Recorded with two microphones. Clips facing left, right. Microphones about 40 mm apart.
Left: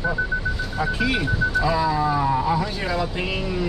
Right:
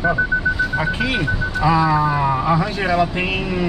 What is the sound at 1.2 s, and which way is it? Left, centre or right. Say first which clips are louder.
Speech: right 2 dB; right.